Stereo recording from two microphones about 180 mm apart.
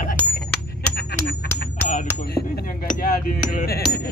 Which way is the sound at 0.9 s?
60° left (ahead or behind).